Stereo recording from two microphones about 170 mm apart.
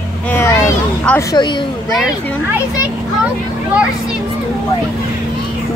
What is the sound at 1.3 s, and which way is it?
Speech, 25° left (ahead or behind).